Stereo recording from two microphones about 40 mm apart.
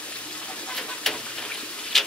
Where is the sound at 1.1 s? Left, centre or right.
Centre.